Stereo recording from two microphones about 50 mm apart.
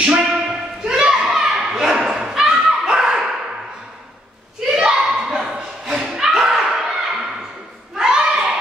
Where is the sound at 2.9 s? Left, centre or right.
Centre.